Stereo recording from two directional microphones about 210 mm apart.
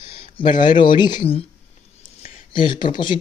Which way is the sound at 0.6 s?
20° left (ahead or behind).